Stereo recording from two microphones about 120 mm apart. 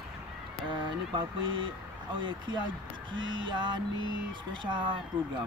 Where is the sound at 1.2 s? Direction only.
45° right (ahead or behind).